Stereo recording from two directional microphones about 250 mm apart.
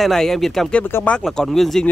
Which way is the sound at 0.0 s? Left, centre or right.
Centre.